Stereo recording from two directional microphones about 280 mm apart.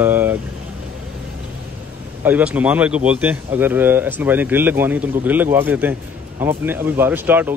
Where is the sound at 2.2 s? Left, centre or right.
Centre.